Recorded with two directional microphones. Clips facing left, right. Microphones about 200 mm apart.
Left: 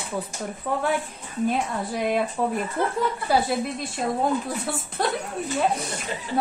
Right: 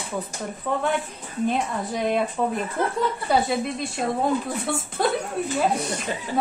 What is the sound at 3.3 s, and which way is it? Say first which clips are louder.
Speech: right 1 dB; centre (ahead or behind).